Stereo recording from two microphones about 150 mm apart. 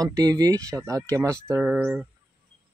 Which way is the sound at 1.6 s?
10° right (ahead or behind).